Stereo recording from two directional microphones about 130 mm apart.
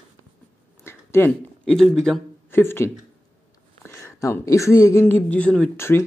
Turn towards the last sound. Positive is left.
turn(degrees=20)  # may be behind; listen again after turning